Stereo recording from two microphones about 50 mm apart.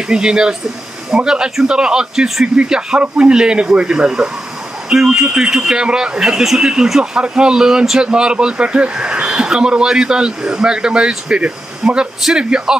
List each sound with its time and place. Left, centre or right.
0.1 s a man's voice: centre